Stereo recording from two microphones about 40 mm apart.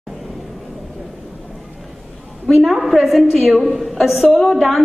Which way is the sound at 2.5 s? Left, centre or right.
Centre.